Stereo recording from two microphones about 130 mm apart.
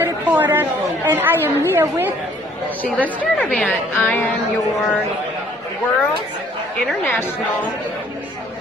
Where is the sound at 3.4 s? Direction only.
10° left (ahead or behind).